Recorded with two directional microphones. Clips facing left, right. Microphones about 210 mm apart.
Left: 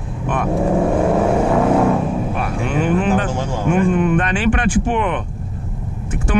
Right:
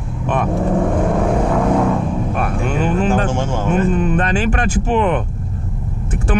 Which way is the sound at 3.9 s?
35° right (ahead or behind).